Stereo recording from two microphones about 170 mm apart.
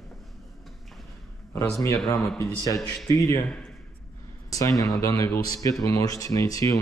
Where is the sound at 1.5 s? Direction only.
20° left (ahead or behind).